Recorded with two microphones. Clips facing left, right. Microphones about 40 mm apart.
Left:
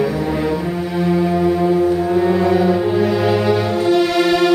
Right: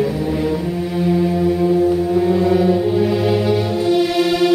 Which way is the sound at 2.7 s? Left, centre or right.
Centre.